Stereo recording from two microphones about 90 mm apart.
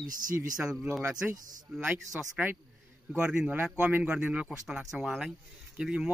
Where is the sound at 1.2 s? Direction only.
20° right (ahead or behind).